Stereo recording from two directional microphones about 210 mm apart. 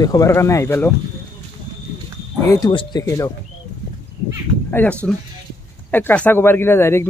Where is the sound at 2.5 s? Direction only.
20° left (ahead or behind).